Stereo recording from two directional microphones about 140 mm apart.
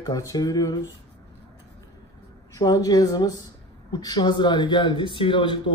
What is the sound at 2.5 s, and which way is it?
Speech, 25° left (ahead or behind).